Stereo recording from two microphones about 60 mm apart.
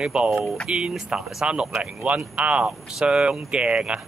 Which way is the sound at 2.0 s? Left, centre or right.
Right.